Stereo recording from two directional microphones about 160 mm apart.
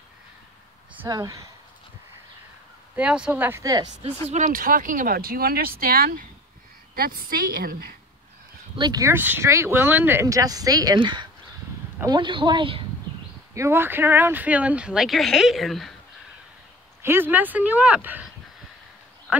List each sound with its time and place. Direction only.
1.0 s speech: 25° right (ahead or behind)
3.0 s speech: 5° right (ahead or behind); by 4.1 s 25° right (ahead or behind)
4.3 s a woman's voice: 55° right (ahead or behind)
8.7 s speech: 25° right (ahead or behind)
13.6 s speech: 15° right (ahead or behind); by 15.9 s centre (ahead or behind)
17.0 s speech: 15° right (ahead or behind)